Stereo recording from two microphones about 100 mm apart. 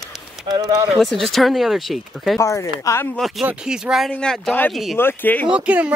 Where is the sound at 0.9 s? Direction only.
Centre (ahead or behind).